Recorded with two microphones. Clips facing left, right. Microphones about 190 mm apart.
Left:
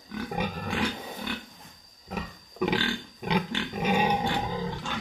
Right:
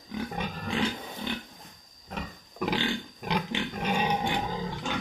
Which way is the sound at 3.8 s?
5° left (ahead or behind).